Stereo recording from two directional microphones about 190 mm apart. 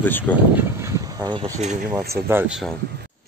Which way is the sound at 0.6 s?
15° right (ahead or behind).